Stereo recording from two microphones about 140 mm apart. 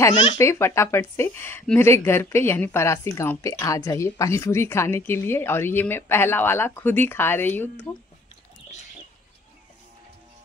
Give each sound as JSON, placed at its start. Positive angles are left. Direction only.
{"t": 0.4, "sound": "speech", "side_deg": 20}